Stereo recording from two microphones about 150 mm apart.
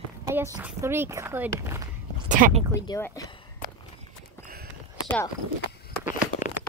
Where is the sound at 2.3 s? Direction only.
65° right (ahead or behind).